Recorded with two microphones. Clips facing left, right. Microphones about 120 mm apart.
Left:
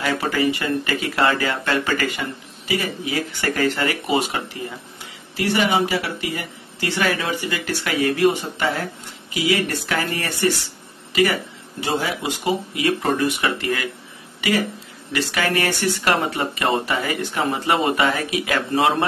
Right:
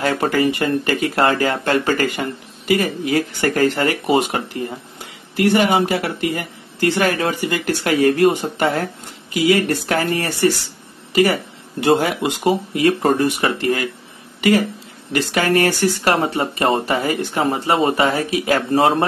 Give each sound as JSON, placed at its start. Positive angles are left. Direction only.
{"t": 0.0, "sound": "speech", "side_deg": -45}
{"t": 11.8, "sound": "speech", "side_deg": -50}